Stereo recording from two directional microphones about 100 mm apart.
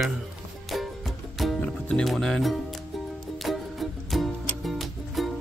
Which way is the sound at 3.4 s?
Centre (ahead or behind).